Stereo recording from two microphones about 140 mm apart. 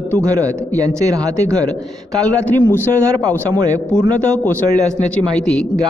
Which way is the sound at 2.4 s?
10° left (ahead or behind).